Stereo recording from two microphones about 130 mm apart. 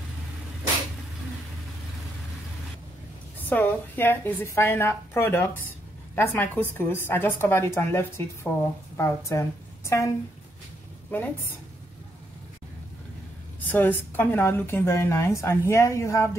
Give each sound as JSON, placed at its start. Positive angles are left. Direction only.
{"t": 3.4, "sound": "a woman's voice", "side_deg": 15}
{"t": 13.7, "sound": "a woman's voice", "side_deg": 15}